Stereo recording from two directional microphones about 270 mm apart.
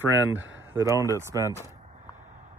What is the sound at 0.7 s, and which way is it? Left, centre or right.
Speech, centre.